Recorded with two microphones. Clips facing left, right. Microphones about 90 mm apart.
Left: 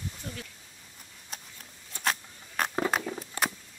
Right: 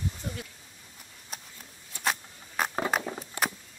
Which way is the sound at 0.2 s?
20° right (ahead or behind).